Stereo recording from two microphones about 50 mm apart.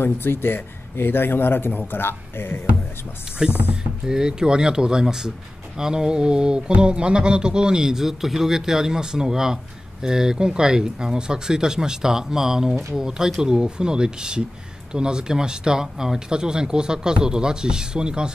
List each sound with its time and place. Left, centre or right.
0.0 s a man's voice: left
3.4 s speech: centre